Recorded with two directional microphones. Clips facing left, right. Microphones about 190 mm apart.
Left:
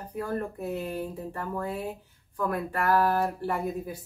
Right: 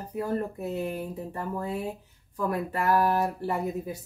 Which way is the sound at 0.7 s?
10° right (ahead or behind).